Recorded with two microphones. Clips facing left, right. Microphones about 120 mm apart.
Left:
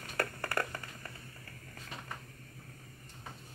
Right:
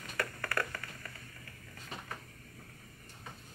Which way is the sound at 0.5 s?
25° left (ahead or behind).